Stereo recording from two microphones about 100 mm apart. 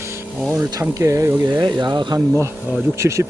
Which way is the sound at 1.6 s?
50° right (ahead or behind).